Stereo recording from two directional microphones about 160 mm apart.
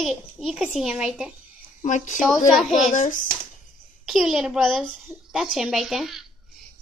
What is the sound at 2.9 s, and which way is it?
Speech, 55° left (ahead or behind).